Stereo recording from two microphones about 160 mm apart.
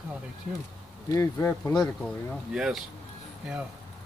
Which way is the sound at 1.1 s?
20° left (ahead or behind).